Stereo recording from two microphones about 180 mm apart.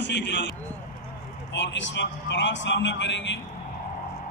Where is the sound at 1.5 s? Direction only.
85° left.